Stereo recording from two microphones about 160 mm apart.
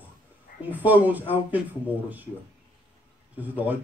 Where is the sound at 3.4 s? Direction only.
10° right (ahead or behind).